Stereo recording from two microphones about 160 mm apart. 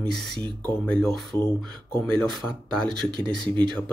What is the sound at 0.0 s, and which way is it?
Speech, 5° left (ahead or behind).